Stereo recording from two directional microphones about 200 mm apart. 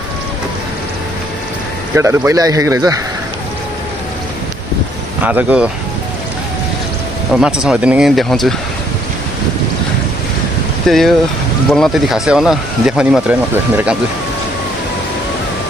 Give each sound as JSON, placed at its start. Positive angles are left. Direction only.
{"t": 2.0, "sound": "speech", "side_deg": -15}
{"t": 5.2, "sound": "speech", "side_deg": -10}
{"t": 7.3, "sound": "speech", "side_deg": -5}
{"t": 10.9, "sound": "speech", "side_deg": 0}